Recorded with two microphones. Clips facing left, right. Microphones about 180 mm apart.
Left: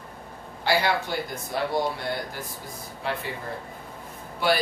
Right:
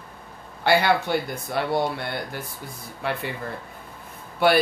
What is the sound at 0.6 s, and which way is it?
Speech, 60° right (ahead or behind).